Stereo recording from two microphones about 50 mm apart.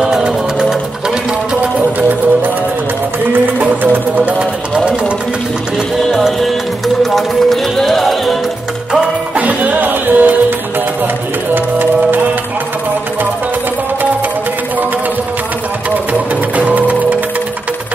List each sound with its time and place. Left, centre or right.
0.0 s music: centre
1.5 s music: right
3.5 s music: right
4.7 s a sound: right
7.0 s music: centre
9.3 s music: right
11.5 s music: right
16.1 s music: right